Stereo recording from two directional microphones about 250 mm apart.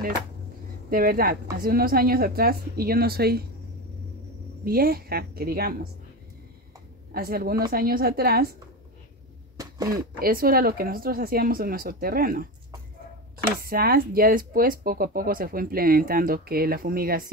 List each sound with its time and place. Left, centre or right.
0.8 s speech: right
4.6 s speech: right
7.2 s speech: right
9.6 s a sound: centre
10.1 s speech: right
13.6 s speech: right